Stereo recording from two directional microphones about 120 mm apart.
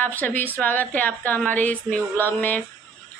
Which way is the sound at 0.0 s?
15° left (ahead or behind).